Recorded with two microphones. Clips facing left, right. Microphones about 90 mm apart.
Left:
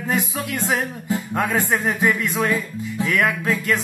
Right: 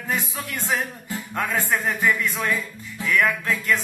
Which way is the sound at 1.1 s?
15° left (ahead or behind).